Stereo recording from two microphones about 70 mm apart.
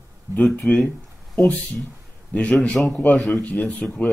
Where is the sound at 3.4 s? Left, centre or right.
Centre.